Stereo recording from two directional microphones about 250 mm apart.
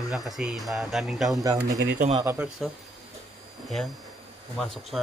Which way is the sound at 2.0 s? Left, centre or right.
Right.